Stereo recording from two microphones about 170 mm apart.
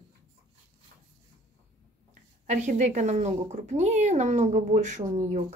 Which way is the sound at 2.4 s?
45° right (ahead or behind).